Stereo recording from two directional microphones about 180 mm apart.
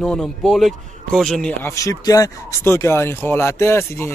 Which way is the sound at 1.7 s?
20° left (ahead or behind).